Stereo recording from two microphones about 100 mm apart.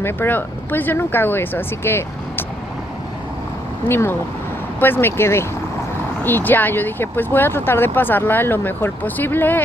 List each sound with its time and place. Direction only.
0.0 s speech: 20° left (ahead or behind)
3.9 s speech: 20° left (ahead or behind)